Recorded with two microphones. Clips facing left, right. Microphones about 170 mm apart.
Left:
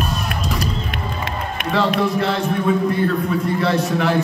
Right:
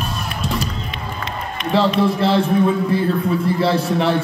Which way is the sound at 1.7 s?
30° right (ahead or behind).